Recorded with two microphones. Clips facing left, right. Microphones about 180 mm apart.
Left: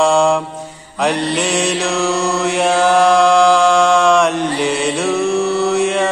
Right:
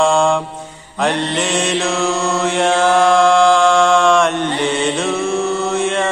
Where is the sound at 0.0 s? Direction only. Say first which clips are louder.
Left 1 dB; centre (ahead or behind).